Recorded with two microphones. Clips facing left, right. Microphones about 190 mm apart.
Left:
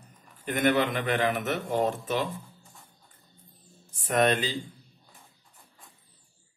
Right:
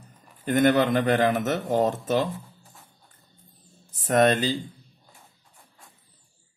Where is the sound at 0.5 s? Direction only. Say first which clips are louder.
Right 5 dB; 40° right (ahead or behind).